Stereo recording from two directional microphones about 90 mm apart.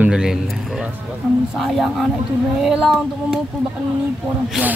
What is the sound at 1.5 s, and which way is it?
Speech, centre (ahead or behind).